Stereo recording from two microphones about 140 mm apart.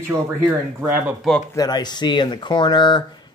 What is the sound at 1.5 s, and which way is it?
Speech, 30° left (ahead or behind).